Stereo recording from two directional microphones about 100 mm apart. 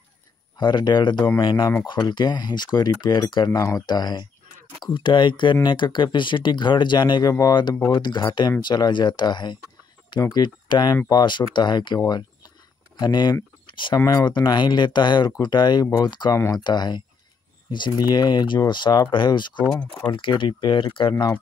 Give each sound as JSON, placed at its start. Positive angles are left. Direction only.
{"t": 0.6, "sound": "speech", "side_deg": 50}
{"t": 3.5, "sound": "speech", "side_deg": 30}
{"t": 3.8, "sound": "speech", "side_deg": 45}
{"t": 12.1, "sound": "a sound", "side_deg": 45}
{"t": 13.0, "sound": "speech", "side_deg": 45}
{"t": 13.7, "sound": "a sound", "side_deg": 55}
{"t": 13.9, "sound": "speech", "side_deg": 35}
{"t": 14.5, "sound": "speech", "side_deg": 50}